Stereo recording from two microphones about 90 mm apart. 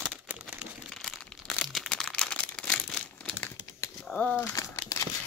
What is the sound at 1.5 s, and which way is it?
Crumpling, 10° left (ahead or behind).